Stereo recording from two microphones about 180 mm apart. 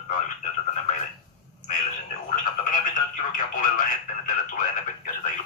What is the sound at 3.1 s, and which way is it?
Speech, 50° left (ahead or behind).